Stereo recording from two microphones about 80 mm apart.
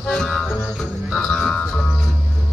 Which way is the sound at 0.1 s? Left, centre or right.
Centre.